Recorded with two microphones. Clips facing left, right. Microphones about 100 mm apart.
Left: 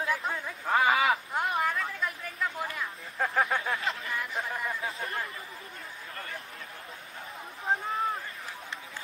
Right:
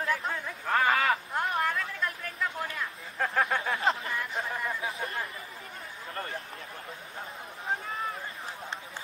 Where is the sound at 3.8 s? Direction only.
35° right (ahead or behind).